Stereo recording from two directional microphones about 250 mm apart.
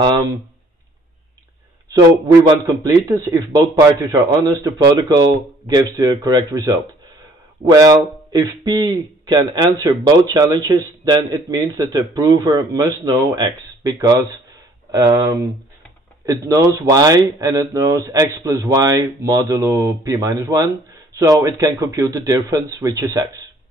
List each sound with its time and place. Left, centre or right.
2.0 s a man's voice: centre